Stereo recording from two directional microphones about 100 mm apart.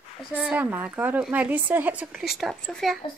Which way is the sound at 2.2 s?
Centre (ahead or behind).